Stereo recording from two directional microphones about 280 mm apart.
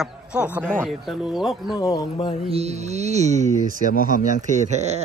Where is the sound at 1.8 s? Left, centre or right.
Centre.